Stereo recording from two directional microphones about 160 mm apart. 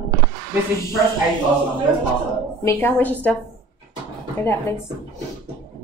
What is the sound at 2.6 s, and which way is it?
Speech, 15° left (ahead or behind).